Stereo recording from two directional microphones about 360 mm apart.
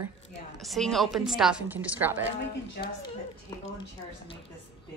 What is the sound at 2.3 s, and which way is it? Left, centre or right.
Speech, left.